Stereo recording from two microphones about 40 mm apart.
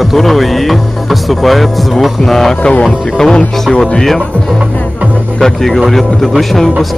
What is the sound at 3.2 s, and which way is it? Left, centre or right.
Speech, centre.